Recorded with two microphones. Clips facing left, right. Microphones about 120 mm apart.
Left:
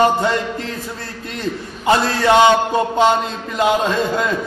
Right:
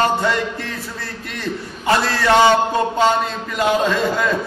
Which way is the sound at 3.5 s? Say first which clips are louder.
Left 1 dB; 20° left (ahead or behind).